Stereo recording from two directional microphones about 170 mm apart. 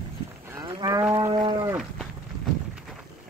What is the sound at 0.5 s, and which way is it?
Cattle, 25° right (ahead or behind).